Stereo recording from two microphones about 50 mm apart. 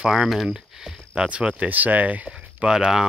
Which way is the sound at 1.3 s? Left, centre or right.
Right.